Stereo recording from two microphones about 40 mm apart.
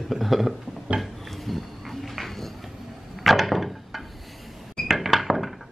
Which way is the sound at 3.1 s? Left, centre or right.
Centre.